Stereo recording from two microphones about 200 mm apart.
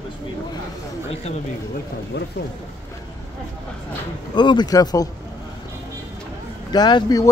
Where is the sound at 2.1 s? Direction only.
55° left (ahead or behind).